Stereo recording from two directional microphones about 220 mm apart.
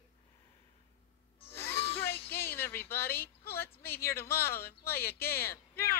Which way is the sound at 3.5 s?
10° left (ahead or behind).